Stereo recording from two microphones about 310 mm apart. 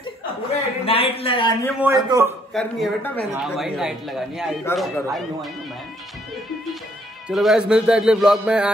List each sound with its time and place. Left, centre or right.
0.8 s speech: centre
1.8 s a man's voice: centre
2.5 s a man's voice: centre
7.2 s a man's voice: centre